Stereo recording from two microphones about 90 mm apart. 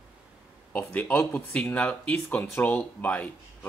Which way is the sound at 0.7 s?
20° left (ahead or behind).